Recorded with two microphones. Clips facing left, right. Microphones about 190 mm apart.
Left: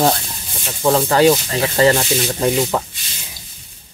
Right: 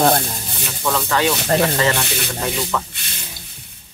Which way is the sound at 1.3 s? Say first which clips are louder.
Right 3 dB; 60° right (ahead or behind).